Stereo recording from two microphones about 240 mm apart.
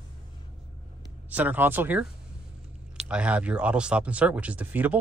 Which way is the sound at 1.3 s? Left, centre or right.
Centre.